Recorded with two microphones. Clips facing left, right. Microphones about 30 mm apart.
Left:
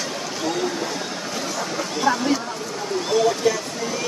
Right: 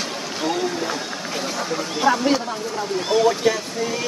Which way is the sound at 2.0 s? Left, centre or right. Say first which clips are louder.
Right 2 dB; right.